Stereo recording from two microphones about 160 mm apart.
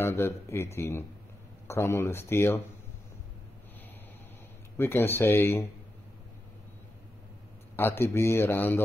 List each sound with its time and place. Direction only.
0.0 s speech: 15° left (ahead or behind)
4.7 s speech: 15° left (ahead or behind)
7.7 s speech: 15° left (ahead or behind)